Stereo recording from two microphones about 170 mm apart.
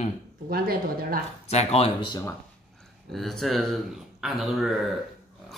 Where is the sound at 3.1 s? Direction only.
Centre (ahead or behind).